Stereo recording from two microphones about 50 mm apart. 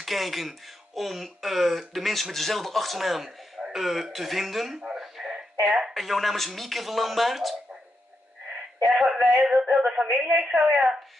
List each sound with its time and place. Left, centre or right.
0.0 s speech: centre
4.9 s a sound: centre
5.9 s speech: centre
8.9 s speech: centre